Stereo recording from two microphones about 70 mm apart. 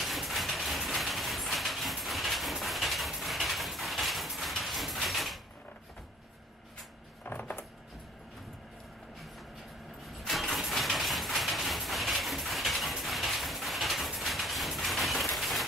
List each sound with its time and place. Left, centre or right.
0.0 s train: centre
7.2 s a sound: left
10.0 s vehicle: centre